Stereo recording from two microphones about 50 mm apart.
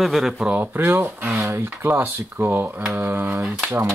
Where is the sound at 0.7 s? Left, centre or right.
Right.